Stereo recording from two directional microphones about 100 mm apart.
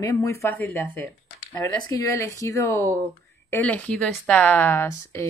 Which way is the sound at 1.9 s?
35° left (ahead or behind).